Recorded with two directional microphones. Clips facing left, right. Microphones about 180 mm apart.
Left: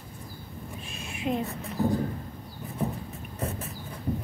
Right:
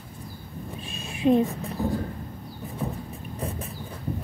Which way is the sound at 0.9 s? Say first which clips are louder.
Right 9 dB; 30° right (ahead or behind).